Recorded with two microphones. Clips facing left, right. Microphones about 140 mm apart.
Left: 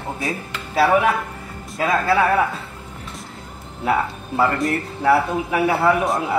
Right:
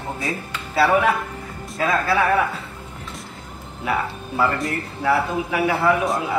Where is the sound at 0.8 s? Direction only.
15° left (ahead or behind).